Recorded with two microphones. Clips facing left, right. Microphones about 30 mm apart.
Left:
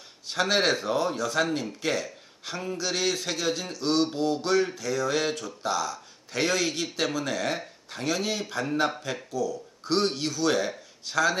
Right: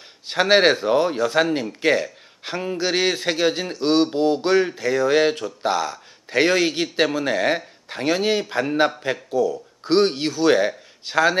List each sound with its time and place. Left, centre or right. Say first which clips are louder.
0.3 s speech: right 8 dB; right